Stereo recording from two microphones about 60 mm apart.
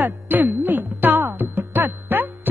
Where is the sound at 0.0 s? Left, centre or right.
Right.